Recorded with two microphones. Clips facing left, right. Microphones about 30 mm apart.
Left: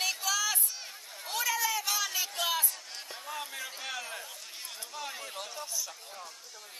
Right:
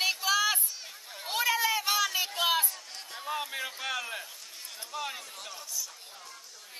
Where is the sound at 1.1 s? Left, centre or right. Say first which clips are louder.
Right 4 dB; right.